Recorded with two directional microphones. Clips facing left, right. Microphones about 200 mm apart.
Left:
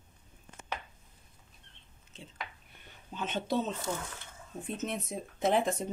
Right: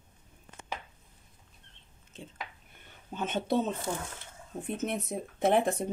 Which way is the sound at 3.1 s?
50° right (ahead or behind).